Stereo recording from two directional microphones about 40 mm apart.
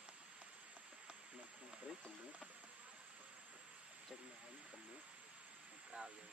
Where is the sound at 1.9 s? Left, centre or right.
Centre.